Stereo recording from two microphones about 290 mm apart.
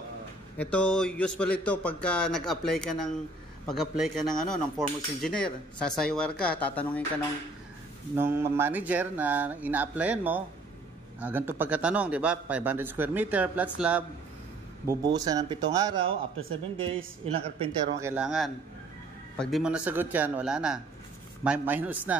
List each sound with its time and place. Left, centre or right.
0.6 s speech: centre
8.2 s speech: centre
15.1 s a man's voice: centre